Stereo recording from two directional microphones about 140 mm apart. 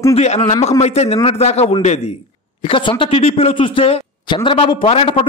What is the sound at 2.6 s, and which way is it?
A man's voice, 40° left (ahead or behind).